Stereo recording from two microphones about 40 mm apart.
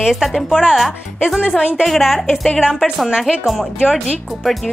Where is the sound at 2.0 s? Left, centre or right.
Centre.